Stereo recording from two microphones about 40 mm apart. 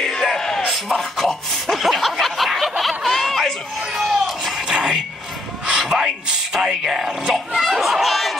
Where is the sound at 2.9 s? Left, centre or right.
Centre.